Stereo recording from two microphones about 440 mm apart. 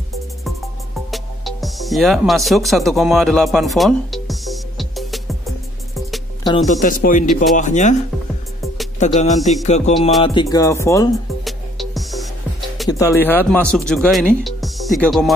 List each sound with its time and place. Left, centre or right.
1.1 s music: centre
6.5 s speech: centre
9.0 s speech: centre
10.2 s music: centre
12.7 s speech: centre